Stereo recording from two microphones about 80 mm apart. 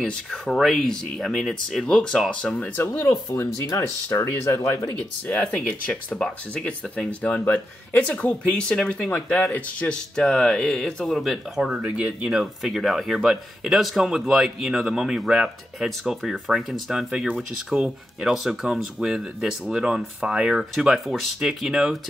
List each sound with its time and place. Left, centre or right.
0.0 s speech: centre
2.7 s speech: left
4.8 s speech: centre